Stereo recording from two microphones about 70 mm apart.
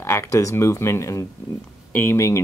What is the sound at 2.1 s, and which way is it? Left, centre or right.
Speech, left.